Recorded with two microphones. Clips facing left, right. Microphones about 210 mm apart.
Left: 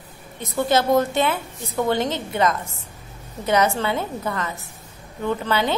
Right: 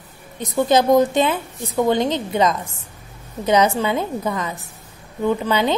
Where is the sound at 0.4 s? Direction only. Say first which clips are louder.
Right 4 dB; 15° right (ahead or behind).